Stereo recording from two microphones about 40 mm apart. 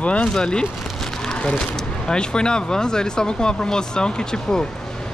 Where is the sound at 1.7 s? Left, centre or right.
Left.